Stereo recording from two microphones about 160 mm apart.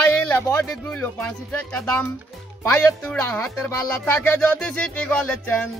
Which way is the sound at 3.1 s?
10° left (ahead or behind).